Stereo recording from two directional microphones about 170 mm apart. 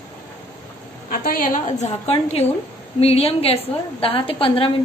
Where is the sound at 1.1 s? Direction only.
55° left (ahead or behind).